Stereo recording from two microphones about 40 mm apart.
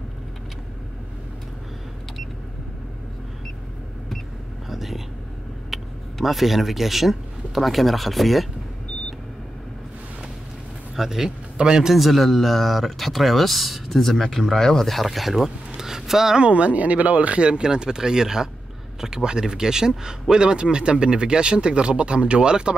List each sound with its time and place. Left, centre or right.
4.6 s vehicle: centre
6.2 s speech: centre
11.0 s a man's voice: centre
12.0 s speech: centre
16.3 s speech: right